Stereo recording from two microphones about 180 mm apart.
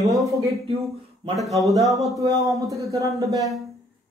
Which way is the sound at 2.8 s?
15° right (ahead or behind).